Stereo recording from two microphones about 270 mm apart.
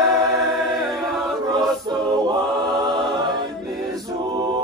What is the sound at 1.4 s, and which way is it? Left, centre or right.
A capella, centre.